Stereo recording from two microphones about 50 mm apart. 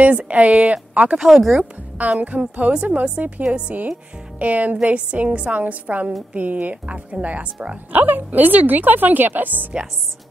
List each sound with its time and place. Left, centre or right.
0.0 s a woman's voice: right
1.1 s speech: centre
2.1 s a woman's voice: right